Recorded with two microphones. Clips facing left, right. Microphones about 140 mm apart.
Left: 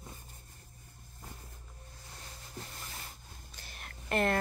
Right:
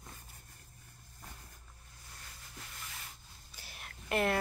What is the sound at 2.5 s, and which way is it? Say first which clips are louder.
Rub: left 4 dB; 35° left (ahead or behind).